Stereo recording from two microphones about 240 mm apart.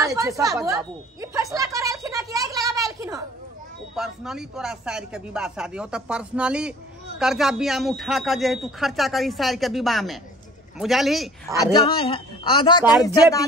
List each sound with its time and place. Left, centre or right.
0.0 s a sound: centre
3.9 s speech: centre
11.5 s a man's voice: centre